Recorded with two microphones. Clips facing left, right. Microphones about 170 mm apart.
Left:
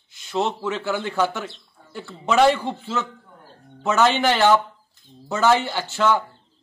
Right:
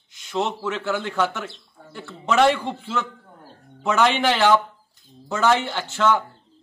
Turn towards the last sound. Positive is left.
turn(degrees=10)  # may be behind; listen again after turning